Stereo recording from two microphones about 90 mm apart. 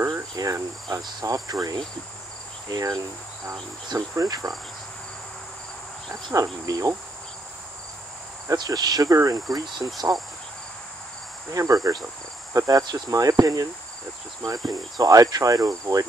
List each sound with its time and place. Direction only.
0.1 s cricket: 45° right (ahead or behind)
2.7 s speech: 45° right (ahead or behind)
4.1 s cricket: 40° right (ahead or behind)
6.3 s cricket: 40° right (ahead or behind)
8.5 s speech: 45° right (ahead or behind)
11.5 s cricket: 40° right (ahead or behind)
12.5 s speech: 40° right (ahead or behind)